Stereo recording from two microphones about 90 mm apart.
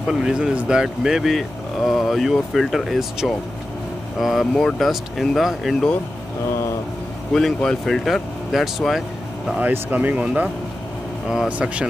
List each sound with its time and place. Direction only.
0.1 s speech: 10° right (ahead or behind)
7.3 s speech: 5° left (ahead or behind)
9.6 s speech: 20° right (ahead or behind)